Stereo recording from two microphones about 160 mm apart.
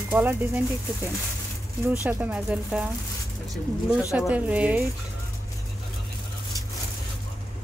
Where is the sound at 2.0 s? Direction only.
10° right (ahead or behind).